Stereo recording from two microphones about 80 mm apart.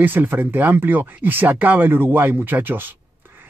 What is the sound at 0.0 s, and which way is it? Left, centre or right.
Speech, right.